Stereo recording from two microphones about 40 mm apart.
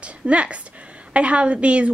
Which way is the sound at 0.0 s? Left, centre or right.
Right.